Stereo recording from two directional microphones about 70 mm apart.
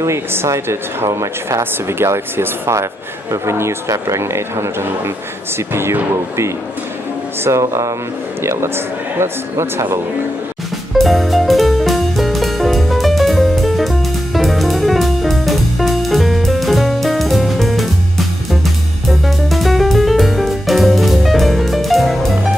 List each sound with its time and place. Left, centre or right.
0.0 s speech: right
1.6 s speech: right
7.4 s speech: right
11.0 s music: centre